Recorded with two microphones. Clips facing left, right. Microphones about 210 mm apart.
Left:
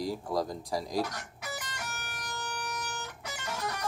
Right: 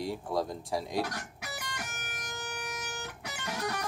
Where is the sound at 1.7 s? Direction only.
50° right (ahead or behind).